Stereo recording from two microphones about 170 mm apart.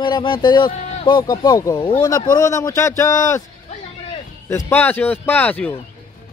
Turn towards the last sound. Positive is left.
turn(degrees=10)  # may be behind; listen again after turning